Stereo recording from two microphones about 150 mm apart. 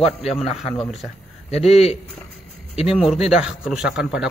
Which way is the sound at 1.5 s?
45° left (ahead or behind).